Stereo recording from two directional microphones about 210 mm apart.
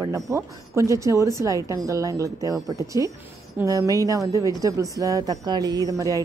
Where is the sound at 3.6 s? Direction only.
15° right (ahead or behind).